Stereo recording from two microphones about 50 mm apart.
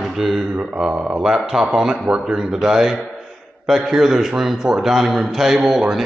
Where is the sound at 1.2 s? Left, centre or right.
Centre.